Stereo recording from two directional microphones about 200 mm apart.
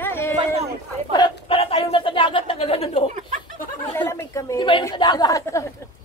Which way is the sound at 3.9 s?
10° left (ahead or behind).